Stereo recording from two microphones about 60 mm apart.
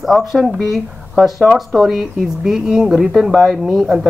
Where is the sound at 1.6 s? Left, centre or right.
Centre.